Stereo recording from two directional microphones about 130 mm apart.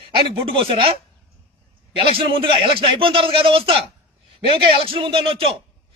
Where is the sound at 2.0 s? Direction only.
40° right (ahead or behind).